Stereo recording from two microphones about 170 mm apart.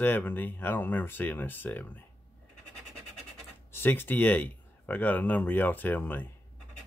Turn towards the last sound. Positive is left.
turn(degrees=10)  # may be behind; listen again after turning